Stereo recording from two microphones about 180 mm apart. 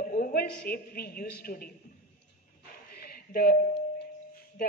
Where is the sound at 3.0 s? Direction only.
60° left (ahead or behind).